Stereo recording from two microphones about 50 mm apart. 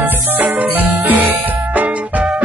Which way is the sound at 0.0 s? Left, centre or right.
Right.